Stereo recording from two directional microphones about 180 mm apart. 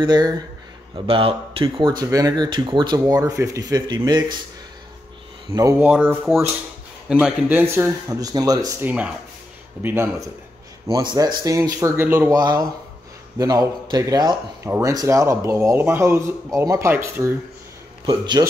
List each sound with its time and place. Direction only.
0.0 s speech: 25° right (ahead or behind)
5.5 s speech: 20° right (ahead or behind)
5.9 s speech: 5° right (ahead or behind)
8.8 s speech: 10° right (ahead or behind); by 18.4 s 25° right (ahead or behind)